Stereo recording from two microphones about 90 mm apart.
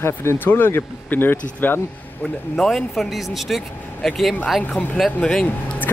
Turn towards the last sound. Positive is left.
turn(degrees=15)  # may be behind; listen again after turning